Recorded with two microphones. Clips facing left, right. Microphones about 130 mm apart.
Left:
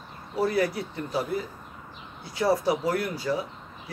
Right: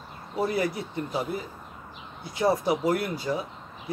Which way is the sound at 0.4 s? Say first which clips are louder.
Left 2 dB; 20° right (ahead or behind).